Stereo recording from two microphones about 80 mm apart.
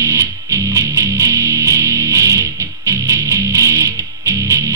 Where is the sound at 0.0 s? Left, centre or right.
Right.